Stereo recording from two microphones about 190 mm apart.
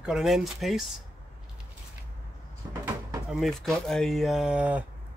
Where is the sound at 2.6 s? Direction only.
15° right (ahead or behind).